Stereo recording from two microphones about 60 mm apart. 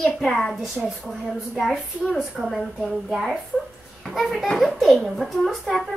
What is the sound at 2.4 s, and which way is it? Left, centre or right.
A woman's voice, right.